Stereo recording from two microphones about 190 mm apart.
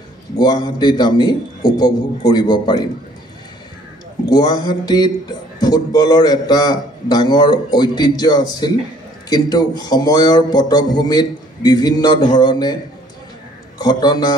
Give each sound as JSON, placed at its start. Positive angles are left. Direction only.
{"t": 0.4, "sound": "a man's voice", "side_deg": 20}
{"t": 4.3, "sound": "a man's voice", "side_deg": 20}
{"t": 13.7, "sound": "a man's voice", "side_deg": 20}